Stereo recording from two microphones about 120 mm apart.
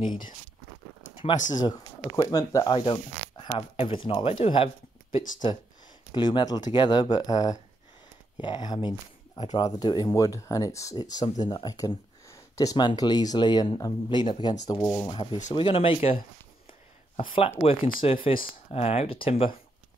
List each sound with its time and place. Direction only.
1.1 s a sound: 45° left (ahead or behind)
1.5 s speech: 35° left (ahead or behind)
2.7 s speech: 45° left (ahead or behind)
6.1 s speech: 40° left (ahead or behind)
14.8 s speech: 25° left (ahead or behind)
15.5 s speech: 50° left (ahead or behind)
17.2 s speech: 45° left (ahead or behind)